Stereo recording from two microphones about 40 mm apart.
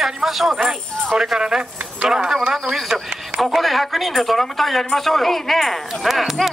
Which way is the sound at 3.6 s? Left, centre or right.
Centre.